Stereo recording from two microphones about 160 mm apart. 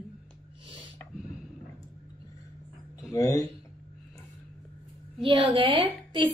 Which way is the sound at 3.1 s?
20° left (ahead or behind).